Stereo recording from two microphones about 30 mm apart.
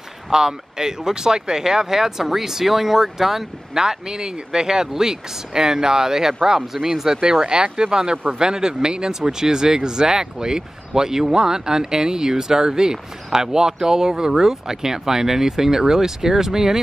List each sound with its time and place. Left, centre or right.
0.3 s speech: right
3.8 s speech: right